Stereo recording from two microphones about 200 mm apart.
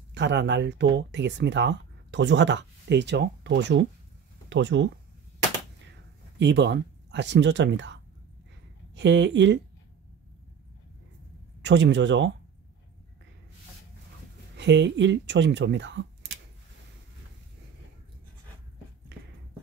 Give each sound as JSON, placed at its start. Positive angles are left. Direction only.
{"t": 0.1, "sound": "speech", "side_deg": -60}
{"t": 6.3, "sound": "speech", "side_deg": -60}
{"t": 11.6, "sound": "speech", "side_deg": -65}
{"t": 14.6, "sound": "speech", "side_deg": -60}